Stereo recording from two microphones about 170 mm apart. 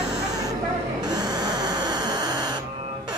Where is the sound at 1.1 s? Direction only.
25° right (ahead or behind).